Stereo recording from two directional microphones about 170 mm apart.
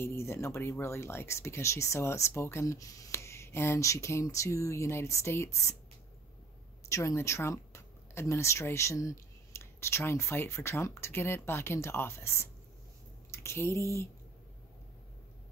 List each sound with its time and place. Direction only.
0.0 s speech: 15° left (ahead or behind)
6.9 s speech: 20° left (ahead or behind)
13.3 s a sound: 15° left (ahead or behind)